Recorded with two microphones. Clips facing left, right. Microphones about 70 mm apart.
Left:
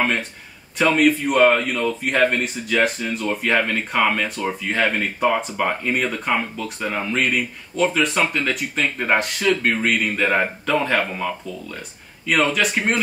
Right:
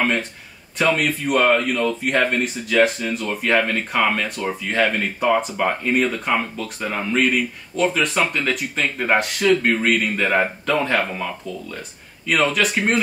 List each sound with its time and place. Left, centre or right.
0.7 s speech: centre
12.3 s speech: centre